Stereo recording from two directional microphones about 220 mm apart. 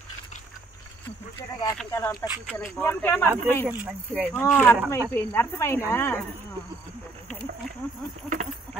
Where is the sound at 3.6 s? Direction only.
5° right (ahead or behind).